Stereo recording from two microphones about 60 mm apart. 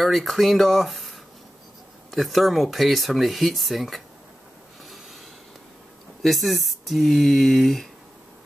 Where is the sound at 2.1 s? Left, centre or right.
Centre.